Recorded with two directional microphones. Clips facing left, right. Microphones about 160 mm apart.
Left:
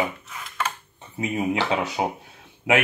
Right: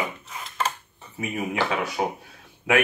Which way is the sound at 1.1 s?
20° left (ahead or behind).